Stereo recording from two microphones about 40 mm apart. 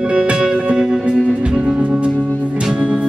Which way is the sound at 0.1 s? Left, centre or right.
Right.